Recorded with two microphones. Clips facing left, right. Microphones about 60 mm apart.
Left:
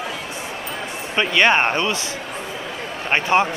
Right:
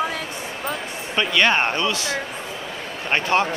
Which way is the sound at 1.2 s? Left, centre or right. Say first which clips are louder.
Left 2 dB; left.